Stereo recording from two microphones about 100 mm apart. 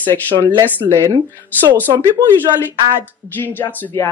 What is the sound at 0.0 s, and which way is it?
Speech, 20° left (ahead or behind).